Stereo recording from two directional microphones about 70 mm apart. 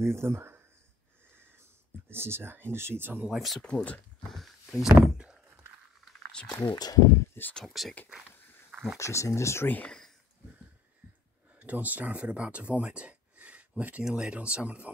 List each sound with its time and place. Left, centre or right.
0.0 s speech: right
2.0 s speech: right
3.3 s speech: centre
3.6 s speech: centre
4.3 s speech: centre
5.1 s a sound: centre
6.3 s speech: centre
6.7 s speech: left
7.5 s speech: centre
8.9 s speech: left
9.8 s a sound: centre
11.6 s speech: right